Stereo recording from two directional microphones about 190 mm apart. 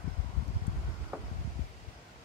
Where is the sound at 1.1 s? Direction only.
5° right (ahead or behind).